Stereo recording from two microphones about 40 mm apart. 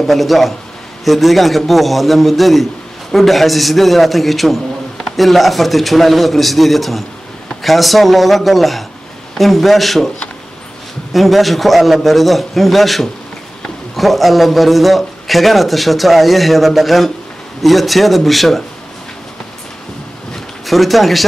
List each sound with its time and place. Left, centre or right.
0.0 s a man's voice: centre
11.1 s a man's voice: centre
20.6 s a man's voice: centre